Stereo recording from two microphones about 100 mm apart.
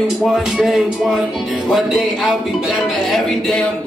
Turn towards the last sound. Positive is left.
turn(degrees=5)  # may be behind; listen again after turning